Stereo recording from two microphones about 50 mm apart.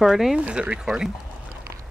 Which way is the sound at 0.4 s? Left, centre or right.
Right.